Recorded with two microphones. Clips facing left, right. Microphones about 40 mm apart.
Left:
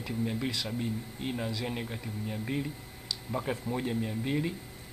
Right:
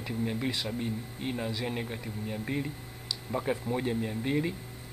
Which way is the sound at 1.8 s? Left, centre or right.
Centre.